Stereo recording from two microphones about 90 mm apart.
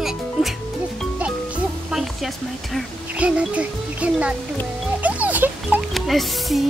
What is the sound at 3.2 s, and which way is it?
Speech, 15° right (ahead or behind).